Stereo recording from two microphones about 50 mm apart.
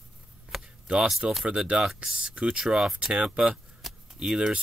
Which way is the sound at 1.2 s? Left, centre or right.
Right.